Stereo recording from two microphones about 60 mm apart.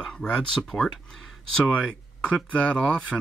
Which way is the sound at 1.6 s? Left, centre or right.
Left.